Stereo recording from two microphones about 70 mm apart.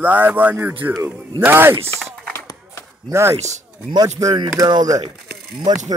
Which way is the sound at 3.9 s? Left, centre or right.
Right.